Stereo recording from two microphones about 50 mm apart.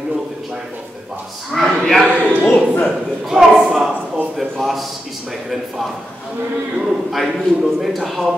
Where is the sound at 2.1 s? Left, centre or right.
Right.